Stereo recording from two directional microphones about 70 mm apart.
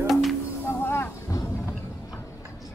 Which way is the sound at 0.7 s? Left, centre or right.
Left.